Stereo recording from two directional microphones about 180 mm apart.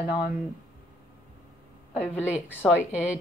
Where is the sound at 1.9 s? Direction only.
10° left (ahead or behind).